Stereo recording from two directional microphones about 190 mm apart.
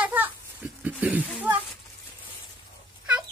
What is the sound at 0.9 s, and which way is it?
Speech, 10° right (ahead or behind).